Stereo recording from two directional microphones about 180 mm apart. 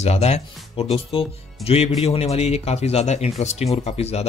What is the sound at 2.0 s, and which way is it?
Speech, 35° left (ahead or behind).